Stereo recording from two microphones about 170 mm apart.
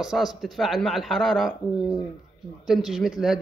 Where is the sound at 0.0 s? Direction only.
Centre (ahead or behind).